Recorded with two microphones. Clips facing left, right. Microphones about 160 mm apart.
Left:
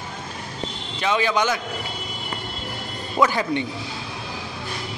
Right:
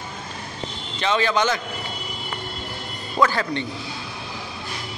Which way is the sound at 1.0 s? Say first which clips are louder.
Even; 10° left (ahead or behind).